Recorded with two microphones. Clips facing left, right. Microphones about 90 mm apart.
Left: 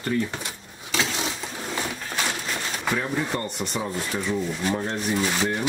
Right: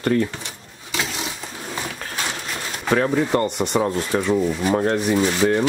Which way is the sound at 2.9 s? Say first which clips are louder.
Right 10 dB; 90° right.